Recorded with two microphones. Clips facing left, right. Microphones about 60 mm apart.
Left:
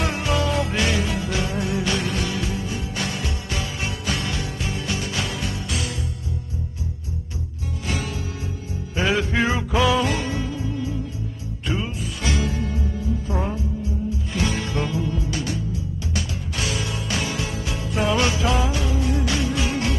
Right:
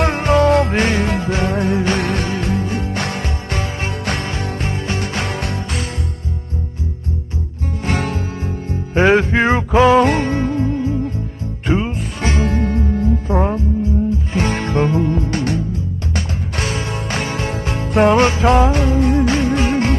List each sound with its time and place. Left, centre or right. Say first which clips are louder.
0.0 s music: right 9 dB; right
7.8 s music: right 7 dB; right